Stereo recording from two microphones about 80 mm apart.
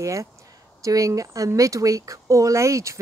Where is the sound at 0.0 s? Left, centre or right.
Right.